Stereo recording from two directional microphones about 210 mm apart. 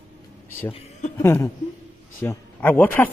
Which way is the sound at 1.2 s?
15° left (ahead or behind).